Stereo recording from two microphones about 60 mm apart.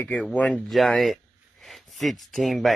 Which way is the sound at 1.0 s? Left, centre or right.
Centre.